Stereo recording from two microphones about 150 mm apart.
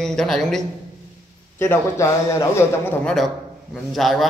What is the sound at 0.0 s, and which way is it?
Speech, 5° left (ahead or behind).